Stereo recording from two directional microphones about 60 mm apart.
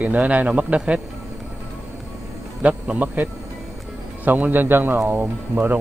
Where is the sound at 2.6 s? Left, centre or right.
Right.